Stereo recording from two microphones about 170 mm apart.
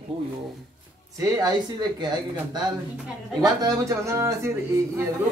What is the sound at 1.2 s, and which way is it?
Speech, 20° right (ahead or behind).